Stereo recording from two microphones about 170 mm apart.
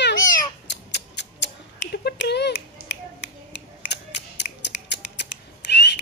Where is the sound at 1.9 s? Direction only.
70° left (ahead or behind).